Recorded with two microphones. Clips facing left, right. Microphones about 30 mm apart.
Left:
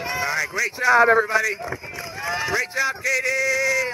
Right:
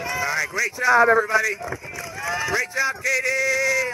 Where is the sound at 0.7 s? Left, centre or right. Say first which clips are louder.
Left 1 dB; left.